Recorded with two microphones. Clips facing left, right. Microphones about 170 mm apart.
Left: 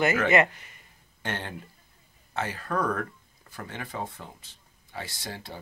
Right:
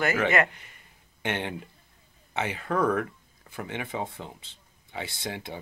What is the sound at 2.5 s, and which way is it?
Speech, 20° right (ahead or behind).